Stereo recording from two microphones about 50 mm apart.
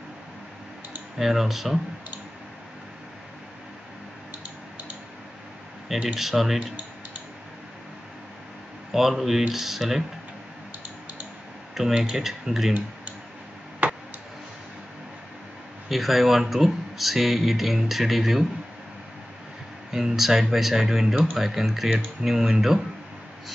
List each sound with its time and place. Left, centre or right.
1.1 s speech: centre
6.1 s speech: centre
8.9 s speech: centre
11.8 s speech: centre
13.8 s tick: right
15.9 s speech: centre
19.9 s speech: centre